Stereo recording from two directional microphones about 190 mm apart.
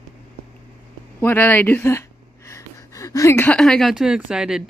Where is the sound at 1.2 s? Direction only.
10° left (ahead or behind).